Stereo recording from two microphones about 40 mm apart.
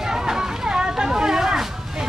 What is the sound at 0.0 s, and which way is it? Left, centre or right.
Hubbub, centre.